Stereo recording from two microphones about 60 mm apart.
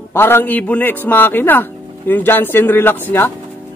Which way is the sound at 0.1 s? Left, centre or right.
Left.